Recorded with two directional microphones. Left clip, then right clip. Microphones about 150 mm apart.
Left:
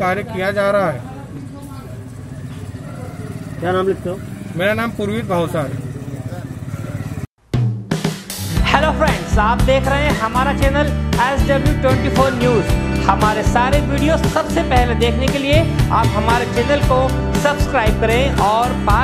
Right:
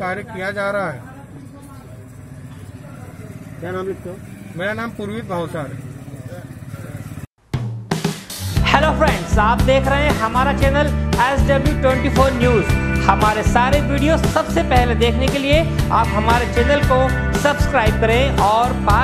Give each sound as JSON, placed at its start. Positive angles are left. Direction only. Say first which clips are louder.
{"t": 0.0, "sound": "speech", "louder": "left 5 dB", "side_deg": -10}
{"t": 3.6, "sound": "speech", "louder": "left 8 dB", "side_deg": 40}
{"t": 4.6, "sound": "music", "louder": "left 6 dB", "side_deg": -5}
{"t": 8.5, "sound": "music", "louder": "even", "side_deg": 0}